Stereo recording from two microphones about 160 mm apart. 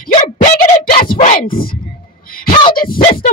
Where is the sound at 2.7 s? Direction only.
65° left (ahead or behind).